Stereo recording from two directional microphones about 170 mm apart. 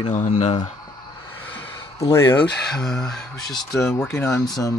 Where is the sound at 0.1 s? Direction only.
45° left (ahead or behind).